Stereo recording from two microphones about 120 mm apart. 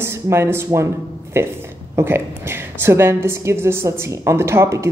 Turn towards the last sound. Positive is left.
turn(degrees=-20)  # may be behind; listen again after turning